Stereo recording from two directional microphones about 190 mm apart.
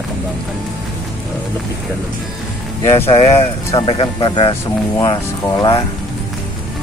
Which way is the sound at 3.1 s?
30° left (ahead or behind).